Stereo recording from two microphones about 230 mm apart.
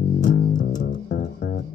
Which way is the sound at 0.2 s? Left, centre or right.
Left.